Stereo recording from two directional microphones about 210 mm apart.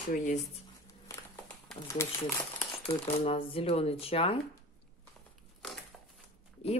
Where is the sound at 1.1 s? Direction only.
15° left (ahead or behind).